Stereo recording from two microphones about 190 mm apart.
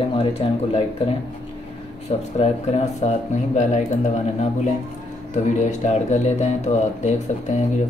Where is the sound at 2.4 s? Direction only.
35° left (ahead or behind).